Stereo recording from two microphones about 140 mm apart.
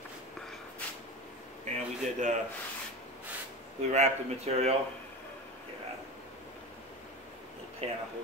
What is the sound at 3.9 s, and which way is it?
Speech, 55° right (ahead or behind).